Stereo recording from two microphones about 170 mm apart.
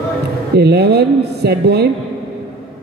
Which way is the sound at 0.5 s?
75° right (ahead or behind).